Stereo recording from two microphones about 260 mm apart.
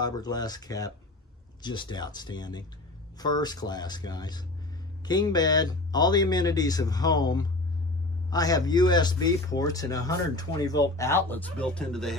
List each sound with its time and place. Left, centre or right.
0.0 s speech: centre